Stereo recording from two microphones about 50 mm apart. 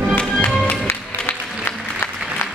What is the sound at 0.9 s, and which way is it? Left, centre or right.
Music, left.